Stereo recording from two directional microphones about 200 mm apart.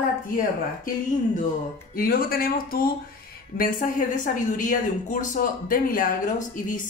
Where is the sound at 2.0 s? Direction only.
45° left (ahead or behind).